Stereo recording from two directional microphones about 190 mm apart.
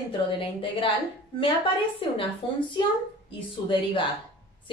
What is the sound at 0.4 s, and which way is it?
A woman's voice, 30° left (ahead or behind).